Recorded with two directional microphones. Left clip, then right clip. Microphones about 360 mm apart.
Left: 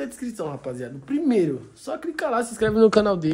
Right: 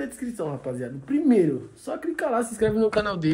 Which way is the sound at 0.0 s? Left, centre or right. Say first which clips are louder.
Even; centre.